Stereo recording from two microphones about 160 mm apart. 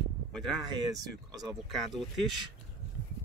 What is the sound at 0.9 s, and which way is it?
Speech, 25° right (ahead or behind).